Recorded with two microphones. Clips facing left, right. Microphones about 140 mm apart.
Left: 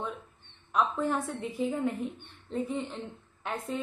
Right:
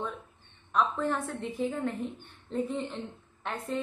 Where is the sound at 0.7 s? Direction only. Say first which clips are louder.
Even; 5° left (ahead or behind).